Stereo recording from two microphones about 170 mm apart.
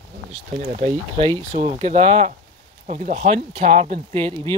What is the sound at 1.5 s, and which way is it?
Speech, 40° right (ahead or behind).